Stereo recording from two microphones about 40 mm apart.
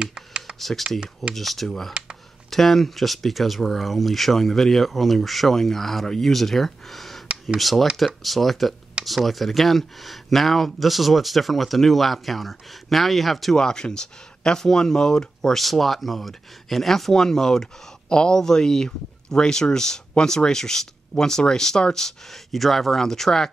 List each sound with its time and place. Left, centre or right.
0.0 s computer keyboard: right
0.6 s speech: centre
13.6 s speech: centre
15.6 s speech: centre